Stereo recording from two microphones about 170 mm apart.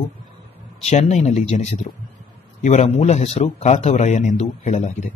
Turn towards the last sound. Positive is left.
turn(degrees=40)  # may be behind; listen again after turning